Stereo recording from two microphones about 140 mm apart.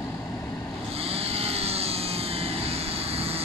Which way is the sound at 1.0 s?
45° right (ahead or behind).